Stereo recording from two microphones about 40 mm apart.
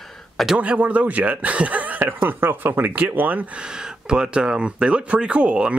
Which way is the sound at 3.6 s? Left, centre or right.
Centre.